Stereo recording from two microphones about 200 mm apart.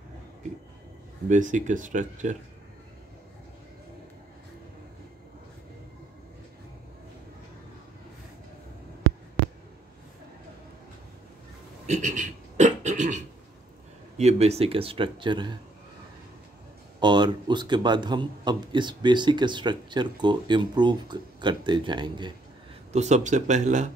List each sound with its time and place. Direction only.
1.3 s speech: 40° right (ahead or behind)
11.8 s throat clearing: 35° right (ahead or behind)
14.1 s a man's voice: 30° right (ahead or behind)
17.0 s a man's voice: 20° right (ahead or behind)
22.9 s speech: 35° right (ahead or behind)